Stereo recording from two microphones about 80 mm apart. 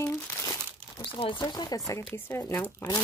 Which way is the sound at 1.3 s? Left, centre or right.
Left.